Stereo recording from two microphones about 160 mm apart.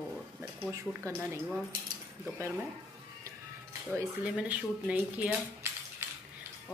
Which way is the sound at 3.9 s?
10° right (ahead or behind).